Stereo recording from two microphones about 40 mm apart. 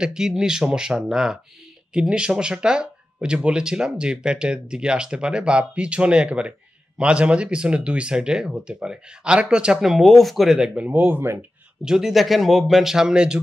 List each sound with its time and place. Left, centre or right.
0.0 s speech: centre
9.8 s speech: centre
11.1 s speech: right
11.8 s speech: centre